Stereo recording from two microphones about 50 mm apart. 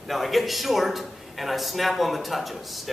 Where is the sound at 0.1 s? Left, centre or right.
Centre.